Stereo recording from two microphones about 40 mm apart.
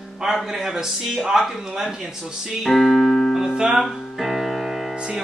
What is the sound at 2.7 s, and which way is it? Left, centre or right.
Speech, centre.